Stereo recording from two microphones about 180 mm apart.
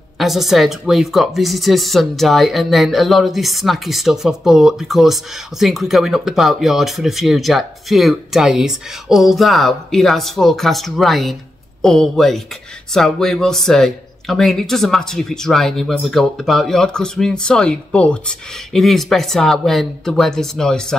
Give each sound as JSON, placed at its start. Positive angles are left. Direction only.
{"t": 0.2, "sound": "speech", "side_deg": 0}